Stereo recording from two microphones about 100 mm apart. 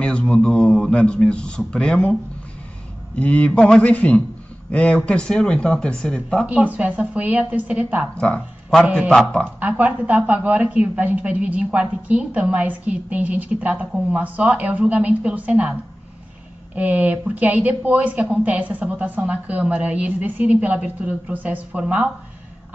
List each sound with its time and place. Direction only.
0.0 s speech: 10° left (ahead or behind)
3.2 s speech: 10° left (ahead or behind)
6.4 s a woman's voice: 15° right (ahead or behind)
8.2 s speech: 10° left (ahead or behind)
9.6 s a woman's voice: 15° right (ahead or behind)
16.7 s a woman's voice: 15° right (ahead or behind)